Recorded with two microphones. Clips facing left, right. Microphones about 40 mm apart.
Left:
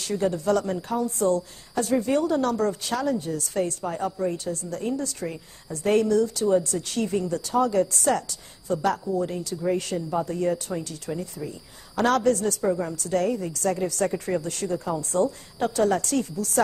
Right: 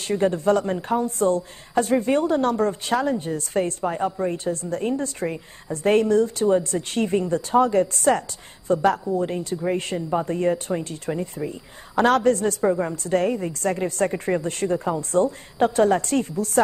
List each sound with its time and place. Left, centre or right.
0.0 s a woman's voice: right